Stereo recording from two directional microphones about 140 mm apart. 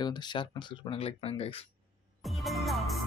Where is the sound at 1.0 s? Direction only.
45° left (ahead or behind).